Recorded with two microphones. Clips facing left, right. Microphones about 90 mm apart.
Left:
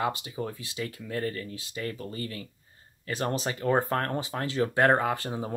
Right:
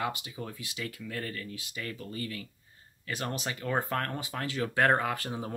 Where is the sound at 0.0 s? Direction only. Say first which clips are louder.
Left 5 dB; 30° left (ahead or behind).